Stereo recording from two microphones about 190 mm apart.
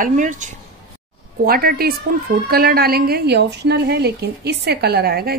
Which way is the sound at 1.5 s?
50° right (ahead or behind).